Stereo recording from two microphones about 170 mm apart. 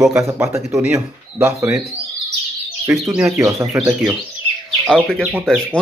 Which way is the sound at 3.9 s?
10° right (ahead or behind).